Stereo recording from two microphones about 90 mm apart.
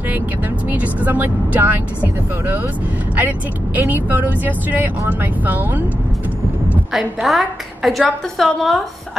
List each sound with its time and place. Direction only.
0.7 s speech: 20° right (ahead or behind)
3.7 s speech: 20° right (ahead or behind)
6.9 s a woman's voice: 5° right (ahead or behind)